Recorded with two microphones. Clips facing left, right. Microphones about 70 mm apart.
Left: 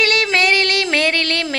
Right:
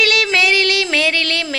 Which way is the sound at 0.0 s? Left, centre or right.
Left.